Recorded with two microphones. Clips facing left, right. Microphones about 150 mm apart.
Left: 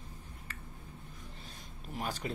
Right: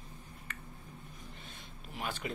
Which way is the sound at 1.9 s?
40° left (ahead or behind).